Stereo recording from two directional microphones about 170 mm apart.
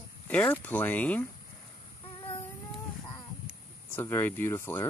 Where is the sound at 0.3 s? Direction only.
10° left (ahead or behind).